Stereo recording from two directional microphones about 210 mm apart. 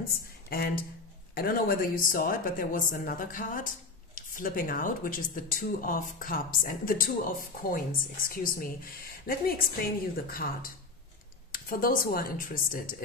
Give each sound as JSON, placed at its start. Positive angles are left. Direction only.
{"t": 0.5, "sound": "a woman's voice", "side_deg": 45}